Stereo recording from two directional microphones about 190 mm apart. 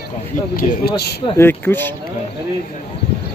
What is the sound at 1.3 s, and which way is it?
Speech, 10° left (ahead or behind).